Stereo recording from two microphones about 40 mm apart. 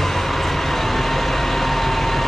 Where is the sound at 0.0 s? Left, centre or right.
Centre.